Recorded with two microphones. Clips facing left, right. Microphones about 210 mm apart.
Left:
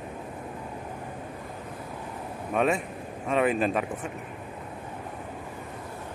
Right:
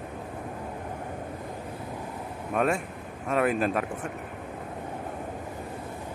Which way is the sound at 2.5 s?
Centre (ahead or behind).